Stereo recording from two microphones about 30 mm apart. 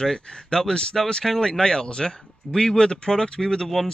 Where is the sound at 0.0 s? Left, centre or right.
Left.